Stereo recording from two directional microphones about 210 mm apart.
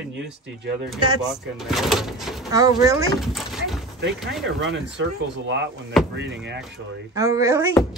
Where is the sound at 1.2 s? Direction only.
Centre (ahead or behind).